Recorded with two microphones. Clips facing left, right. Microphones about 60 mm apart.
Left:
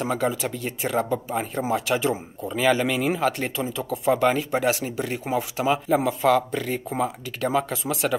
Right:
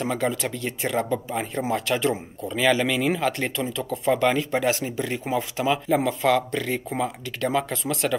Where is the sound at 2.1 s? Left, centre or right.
Centre.